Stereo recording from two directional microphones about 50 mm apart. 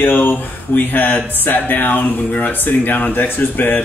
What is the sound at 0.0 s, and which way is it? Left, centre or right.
A man's voice, left.